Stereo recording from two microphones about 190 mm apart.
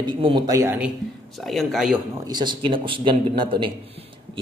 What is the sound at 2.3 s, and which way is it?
A man's voice, 25° right (ahead or behind).